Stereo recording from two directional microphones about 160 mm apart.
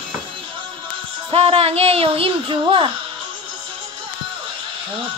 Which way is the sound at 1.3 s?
40° right (ahead or behind).